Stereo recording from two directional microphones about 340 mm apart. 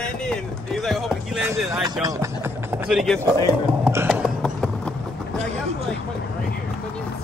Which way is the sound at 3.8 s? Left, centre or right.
Centre.